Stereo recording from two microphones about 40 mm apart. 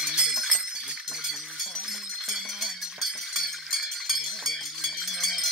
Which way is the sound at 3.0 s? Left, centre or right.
Centre.